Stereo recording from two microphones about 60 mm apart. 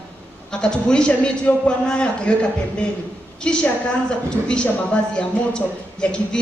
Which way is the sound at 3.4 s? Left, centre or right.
Centre.